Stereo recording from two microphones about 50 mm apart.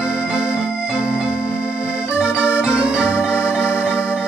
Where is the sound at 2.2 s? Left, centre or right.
Right.